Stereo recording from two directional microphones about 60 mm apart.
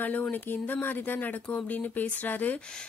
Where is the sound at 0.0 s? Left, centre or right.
Left.